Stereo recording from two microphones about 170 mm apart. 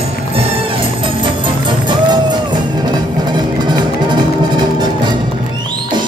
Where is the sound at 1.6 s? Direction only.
25° right (ahead or behind).